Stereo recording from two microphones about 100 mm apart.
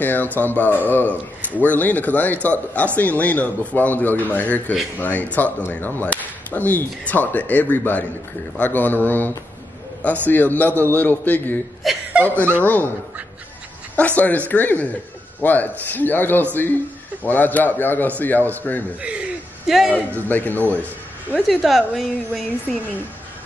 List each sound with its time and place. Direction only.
0.0 s a man's voice: 20° left (ahead or behind)
11.8 s a woman's voice: centre (ahead or behind)
12.6 s a man's voice: 15° left (ahead or behind)
13.9 s a man's voice: 15° left (ahead or behind)
18.9 s a woman's voice: 10° right (ahead or behind)
20.2 s a man's voice: 20° left (ahead or behind)
21.5 s a woman's voice: centre (ahead or behind)